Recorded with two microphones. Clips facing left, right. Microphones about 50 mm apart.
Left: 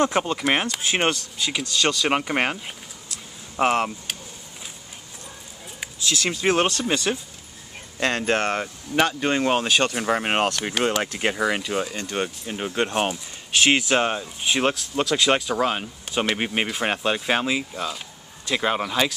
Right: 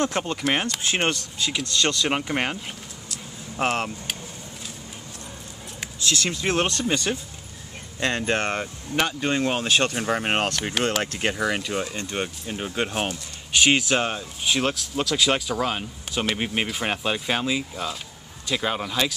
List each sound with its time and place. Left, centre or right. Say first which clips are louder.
0.2 s speech: left 2 dB; centre
6.0 s speech: left 2 dB; centre
8.3 s speech: left 2 dB; centre